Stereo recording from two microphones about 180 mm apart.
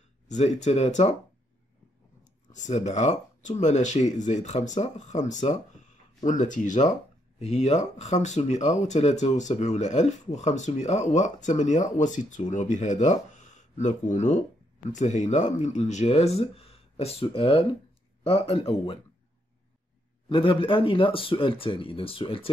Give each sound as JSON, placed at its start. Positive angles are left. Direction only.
{"t": 0.3, "sound": "speech", "side_deg": 40}
{"t": 2.5, "sound": "speech", "side_deg": 40}
{"t": 20.2, "sound": "speech", "side_deg": 30}